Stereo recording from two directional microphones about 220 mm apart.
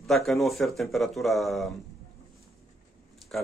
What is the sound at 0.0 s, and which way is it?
Speech, centre (ahead or behind).